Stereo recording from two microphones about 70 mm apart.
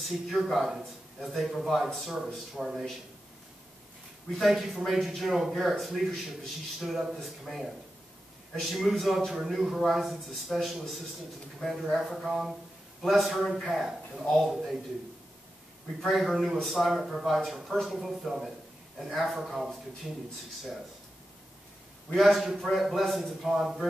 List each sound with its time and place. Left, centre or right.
0.0 s speech: centre
4.4 s speech: centre
16.0 s speech: centre
22.1 s speech: centre